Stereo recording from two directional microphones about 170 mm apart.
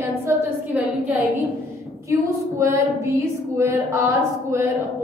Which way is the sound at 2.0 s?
15° right (ahead or behind).